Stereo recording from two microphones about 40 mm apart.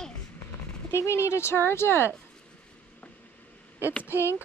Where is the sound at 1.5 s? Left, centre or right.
Left.